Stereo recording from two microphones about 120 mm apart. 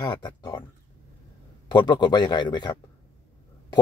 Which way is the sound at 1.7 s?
35° left (ahead or behind).